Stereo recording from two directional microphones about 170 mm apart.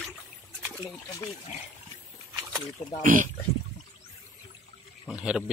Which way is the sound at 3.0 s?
50° right (ahead or behind).